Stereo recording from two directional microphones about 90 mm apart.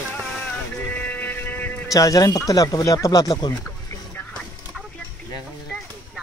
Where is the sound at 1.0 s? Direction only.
20° left (ahead or behind).